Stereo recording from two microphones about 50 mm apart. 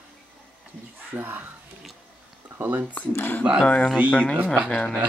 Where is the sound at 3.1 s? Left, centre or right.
Left.